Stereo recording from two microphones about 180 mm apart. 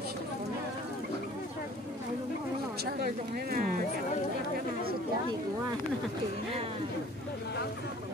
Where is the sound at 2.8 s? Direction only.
60° right (ahead or behind).